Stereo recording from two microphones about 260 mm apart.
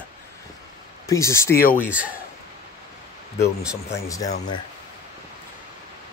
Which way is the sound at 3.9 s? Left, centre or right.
Centre.